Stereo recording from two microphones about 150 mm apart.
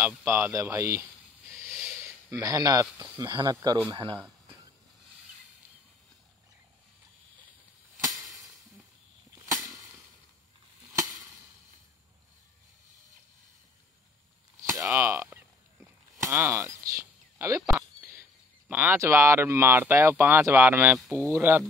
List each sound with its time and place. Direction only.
0.0 s speech: 10° right (ahead or behind)
1.6 s a sound: 15° right (ahead or behind)
2.4 s speech: 25° right (ahead or behind)
11.0 s chop: 25° right (ahead or behind)
14.8 s a sound: 15° right (ahead or behind)
17.0 s whispering: 20° right (ahead or behind)
18.7 s speech: 10° right (ahead or behind)